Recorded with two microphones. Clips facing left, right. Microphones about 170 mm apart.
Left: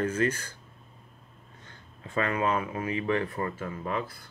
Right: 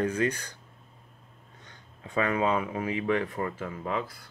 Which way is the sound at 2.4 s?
15° right (ahead or behind).